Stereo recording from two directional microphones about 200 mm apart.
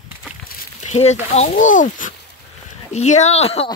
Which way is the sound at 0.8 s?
35° left (ahead or behind).